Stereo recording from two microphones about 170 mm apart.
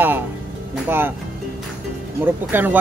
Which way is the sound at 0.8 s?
15° right (ahead or behind).